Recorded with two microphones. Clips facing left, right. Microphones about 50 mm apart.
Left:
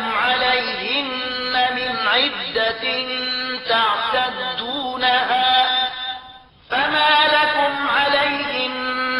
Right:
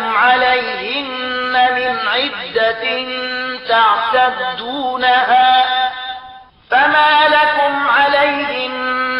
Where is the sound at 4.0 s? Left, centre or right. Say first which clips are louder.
Right 7 dB; centre.